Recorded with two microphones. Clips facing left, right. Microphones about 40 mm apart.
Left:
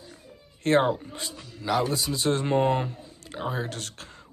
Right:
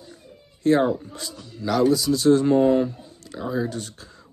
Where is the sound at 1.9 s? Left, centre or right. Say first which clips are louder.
Right 9 dB; left.